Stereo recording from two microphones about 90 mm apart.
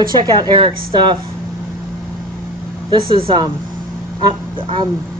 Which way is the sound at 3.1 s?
65° right (ahead or behind).